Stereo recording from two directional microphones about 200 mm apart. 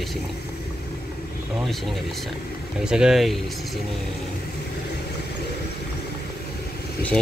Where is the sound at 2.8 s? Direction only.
5° right (ahead or behind).